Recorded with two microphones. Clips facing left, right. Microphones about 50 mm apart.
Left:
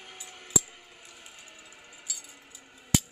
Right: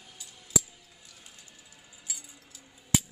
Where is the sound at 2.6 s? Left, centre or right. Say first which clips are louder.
Left 3 dB; left.